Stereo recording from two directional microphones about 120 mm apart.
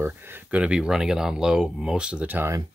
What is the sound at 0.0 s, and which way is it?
Speech, 20° right (ahead or behind).